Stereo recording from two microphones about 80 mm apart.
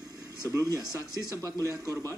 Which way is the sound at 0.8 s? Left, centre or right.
Left.